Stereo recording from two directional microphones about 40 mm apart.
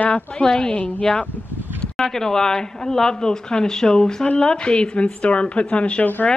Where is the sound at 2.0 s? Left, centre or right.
Centre; by 6.0 s left.